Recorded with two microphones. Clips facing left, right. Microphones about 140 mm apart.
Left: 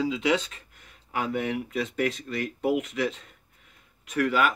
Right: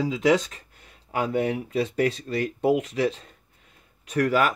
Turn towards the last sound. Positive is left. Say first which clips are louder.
# right 2 dB
turn(degrees=-40)  # may be behind; listen again after turning